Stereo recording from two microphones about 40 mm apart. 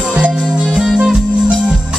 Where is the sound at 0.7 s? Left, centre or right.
Centre.